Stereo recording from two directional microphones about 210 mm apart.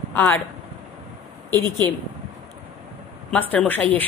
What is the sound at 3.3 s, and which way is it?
Speech, 5° left (ahead or behind).